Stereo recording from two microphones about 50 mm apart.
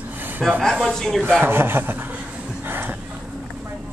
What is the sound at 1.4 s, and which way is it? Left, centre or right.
Speech, right.